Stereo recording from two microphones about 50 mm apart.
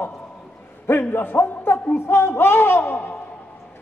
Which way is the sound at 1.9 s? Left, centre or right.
Left.